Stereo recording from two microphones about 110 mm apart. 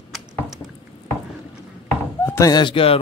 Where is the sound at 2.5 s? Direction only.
50° left (ahead or behind).